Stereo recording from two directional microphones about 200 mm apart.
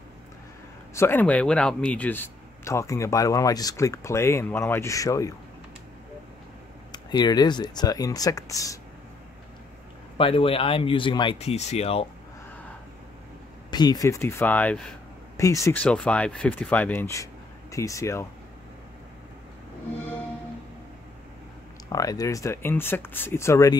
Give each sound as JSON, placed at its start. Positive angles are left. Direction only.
{"t": 0.9, "sound": "speech", "side_deg": 10}
{"t": 6.9, "sound": "speech", "side_deg": 20}
{"t": 10.1, "sound": "speech", "side_deg": 25}
{"t": 13.7, "sound": "speech", "side_deg": 20}
{"t": 15.3, "sound": "speech", "side_deg": 15}
{"t": 21.8, "sound": "speech", "side_deg": 20}